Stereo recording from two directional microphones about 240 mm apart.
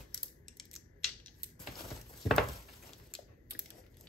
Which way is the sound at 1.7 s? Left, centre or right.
Centre.